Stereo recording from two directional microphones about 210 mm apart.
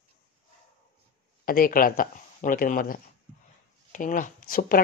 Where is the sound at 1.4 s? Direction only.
45° left (ahead or behind).